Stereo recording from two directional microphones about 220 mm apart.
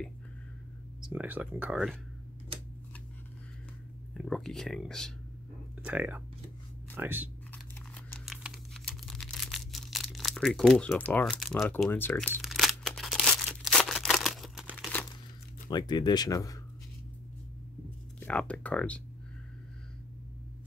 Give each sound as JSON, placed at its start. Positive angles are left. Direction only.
{"t": 1.0, "sound": "speech", "side_deg": -5}
{"t": 4.1, "sound": "speech", "side_deg": 0}
{"t": 8.3, "sound": "a sound", "side_deg": 0}
{"t": 11.7, "sound": "speech", "side_deg": 10}
{"t": 12.4, "sound": "crumpling", "side_deg": 0}
{"t": 15.7, "sound": "speech", "side_deg": 20}
{"t": 18.2, "sound": "speech", "side_deg": 5}